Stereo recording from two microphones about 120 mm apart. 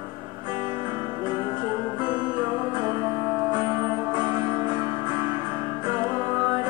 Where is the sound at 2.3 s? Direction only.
20° right (ahead or behind).